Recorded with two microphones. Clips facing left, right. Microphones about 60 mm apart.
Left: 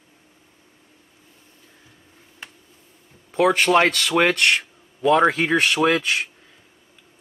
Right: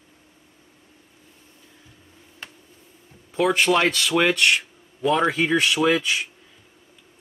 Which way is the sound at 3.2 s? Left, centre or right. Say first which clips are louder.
Left 2 dB; left.